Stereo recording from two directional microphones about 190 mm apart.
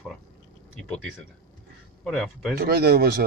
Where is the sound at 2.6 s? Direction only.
55° right (ahead or behind).